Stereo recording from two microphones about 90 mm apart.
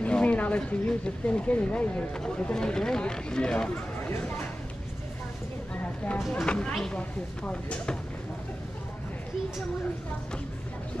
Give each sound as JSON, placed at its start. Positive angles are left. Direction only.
{"t": 0.0, "sound": "speech", "side_deg": 15}
{"t": 5.8, "sound": "a sound", "side_deg": 20}
{"t": 6.4, "sound": "speech", "side_deg": 10}